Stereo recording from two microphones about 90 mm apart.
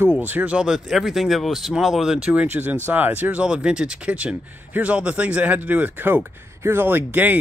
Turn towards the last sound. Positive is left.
turn(degrees=-20)  # may be behind; listen again after turning